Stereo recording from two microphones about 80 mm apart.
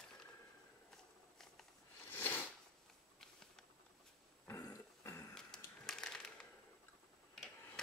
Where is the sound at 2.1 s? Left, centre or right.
Left.